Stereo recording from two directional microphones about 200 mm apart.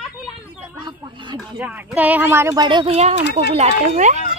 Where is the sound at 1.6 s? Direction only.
5° right (ahead or behind).